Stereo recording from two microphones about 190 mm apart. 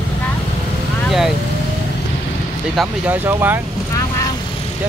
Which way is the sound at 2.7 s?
10° right (ahead or behind).